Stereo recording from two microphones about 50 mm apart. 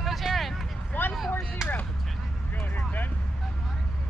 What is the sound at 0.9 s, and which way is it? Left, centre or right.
Vehicle, left.